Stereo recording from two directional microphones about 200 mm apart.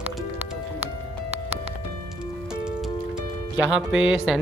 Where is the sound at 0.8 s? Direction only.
30° right (ahead or behind).